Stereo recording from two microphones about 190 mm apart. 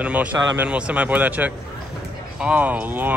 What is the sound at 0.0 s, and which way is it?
Speech, 5° right (ahead or behind).